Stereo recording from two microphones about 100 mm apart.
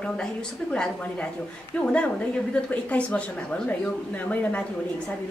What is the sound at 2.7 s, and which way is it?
Speech, 10° left (ahead or behind).